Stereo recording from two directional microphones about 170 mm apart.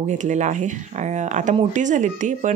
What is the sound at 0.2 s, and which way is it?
Speech, 45° right (ahead or behind).